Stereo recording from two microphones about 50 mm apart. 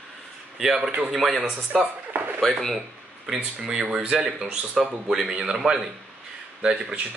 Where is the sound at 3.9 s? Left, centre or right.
Right; by 5.2 s centre.